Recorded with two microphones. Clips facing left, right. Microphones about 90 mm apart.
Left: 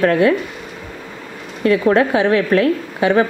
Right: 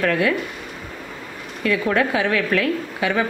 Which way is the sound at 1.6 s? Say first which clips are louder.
Left 6 dB; 30° left (ahead or behind).